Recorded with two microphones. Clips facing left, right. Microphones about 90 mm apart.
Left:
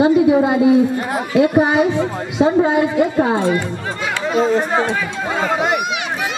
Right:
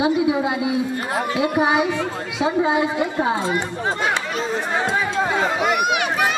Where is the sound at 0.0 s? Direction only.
50° left (ahead or behind).